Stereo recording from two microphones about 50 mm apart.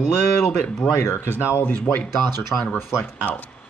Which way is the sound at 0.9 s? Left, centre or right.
Left.